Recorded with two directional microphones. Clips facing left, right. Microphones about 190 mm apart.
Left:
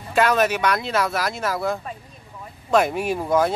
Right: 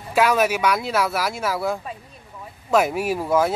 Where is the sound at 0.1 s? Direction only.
5° right (ahead or behind).